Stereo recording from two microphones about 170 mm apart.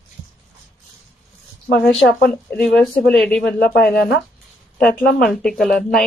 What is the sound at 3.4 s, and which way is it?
Speech, 80° left.